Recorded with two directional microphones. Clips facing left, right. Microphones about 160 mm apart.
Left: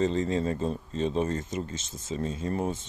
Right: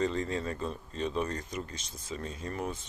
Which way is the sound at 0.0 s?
25° left (ahead or behind).